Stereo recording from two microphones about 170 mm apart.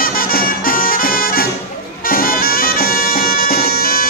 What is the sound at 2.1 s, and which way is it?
Bagpipes, 60° left (ahead or behind).